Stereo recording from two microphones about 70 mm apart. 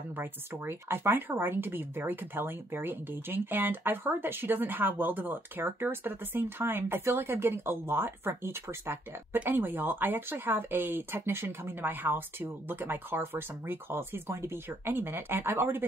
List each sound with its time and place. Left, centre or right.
0.1 s speech: right